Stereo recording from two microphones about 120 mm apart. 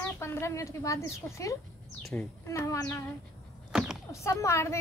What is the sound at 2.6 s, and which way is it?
Speech, 25° left (ahead or behind).